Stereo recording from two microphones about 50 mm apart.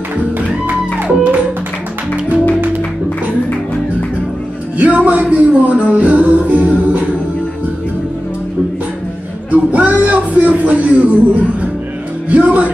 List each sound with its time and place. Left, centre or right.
0.2 s music: right
4.7 s a sound: right
5.3 s music: right
9.5 s music: right
12.3 s music: right